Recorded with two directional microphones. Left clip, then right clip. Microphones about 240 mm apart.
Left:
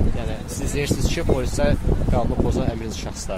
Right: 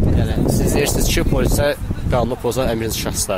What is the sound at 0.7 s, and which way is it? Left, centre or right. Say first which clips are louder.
Speech: right 2 dB; right.